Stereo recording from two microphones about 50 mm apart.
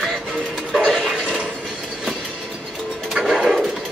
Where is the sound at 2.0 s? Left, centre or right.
Centre.